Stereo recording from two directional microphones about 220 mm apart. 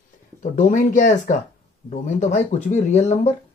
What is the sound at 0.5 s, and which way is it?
Speech, 35° left (ahead or behind).